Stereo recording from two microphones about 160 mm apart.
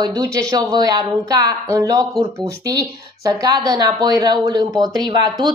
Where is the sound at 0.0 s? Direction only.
25° right (ahead or behind).